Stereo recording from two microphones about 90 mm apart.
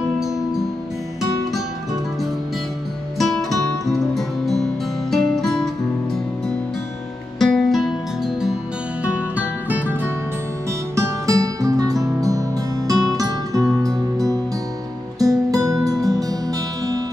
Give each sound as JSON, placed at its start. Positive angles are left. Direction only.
{"t": 3.2, "sound": "music", "side_deg": 5}
{"t": 7.3, "sound": "music", "side_deg": 5}
{"t": 9.0, "sound": "music", "side_deg": -15}
{"t": 11.0, "sound": "music", "side_deg": -40}